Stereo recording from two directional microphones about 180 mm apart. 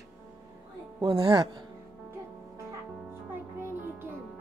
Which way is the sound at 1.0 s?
25° right (ahead or behind).